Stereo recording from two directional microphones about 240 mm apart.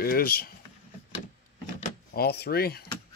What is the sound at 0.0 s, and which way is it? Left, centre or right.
Speech, left.